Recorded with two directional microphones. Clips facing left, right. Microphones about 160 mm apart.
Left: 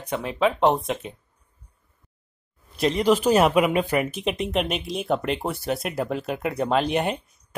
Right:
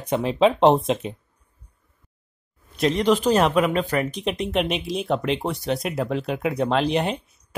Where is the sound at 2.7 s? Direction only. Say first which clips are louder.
Right 1 dB; centre (ahead or behind).